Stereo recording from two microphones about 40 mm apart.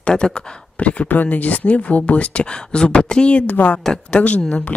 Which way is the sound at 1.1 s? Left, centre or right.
Left.